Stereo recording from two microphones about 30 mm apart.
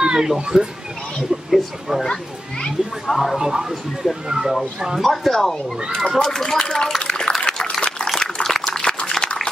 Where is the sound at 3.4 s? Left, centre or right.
Centre.